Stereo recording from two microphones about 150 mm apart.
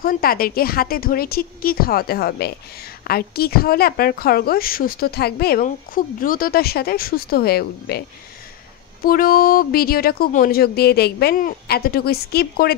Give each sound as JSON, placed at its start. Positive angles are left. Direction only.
{"t": 0.0, "sound": "a woman's voice", "side_deg": 75}
{"t": 9.0, "sound": "a woman's voice", "side_deg": 75}